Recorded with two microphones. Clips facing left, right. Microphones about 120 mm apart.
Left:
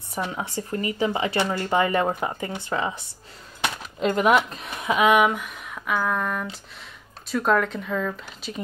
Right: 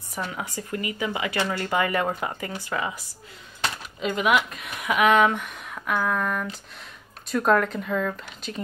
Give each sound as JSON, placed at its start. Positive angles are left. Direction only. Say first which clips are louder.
{"t": 0.1, "sound": "speech", "louder": "left 3 dB", "side_deg": 25}
{"t": 1.4, "sound": "speech", "louder": "left 1 dB", "side_deg": 20}
{"t": 4.0, "sound": "speech", "louder": "left 3 dB", "side_deg": 40}
{"t": 5.3, "sound": "speech", "louder": "even", "side_deg": 0}